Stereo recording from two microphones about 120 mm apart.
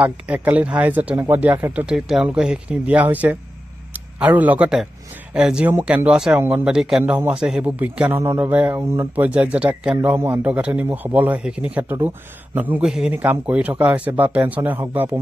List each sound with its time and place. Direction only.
0.0 s a man's voice: 10° right (ahead or behind)
8.2 s a man's voice: 25° right (ahead or behind)